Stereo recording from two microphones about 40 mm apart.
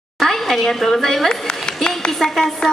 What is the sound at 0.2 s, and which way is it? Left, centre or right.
A woman's voice, centre.